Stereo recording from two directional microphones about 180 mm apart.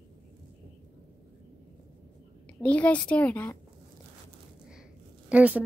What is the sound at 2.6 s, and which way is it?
Speech, 5° left (ahead or behind).